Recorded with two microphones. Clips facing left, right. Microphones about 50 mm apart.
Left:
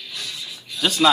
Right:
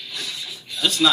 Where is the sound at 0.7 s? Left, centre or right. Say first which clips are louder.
Left 1 dB; centre.